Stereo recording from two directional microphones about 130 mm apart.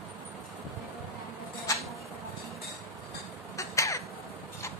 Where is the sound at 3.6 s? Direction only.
25° left (ahead or behind).